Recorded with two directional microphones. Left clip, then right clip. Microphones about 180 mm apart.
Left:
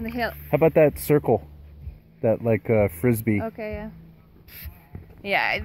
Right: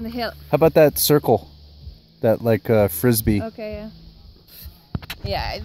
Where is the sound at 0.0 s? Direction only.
65° right (ahead or behind).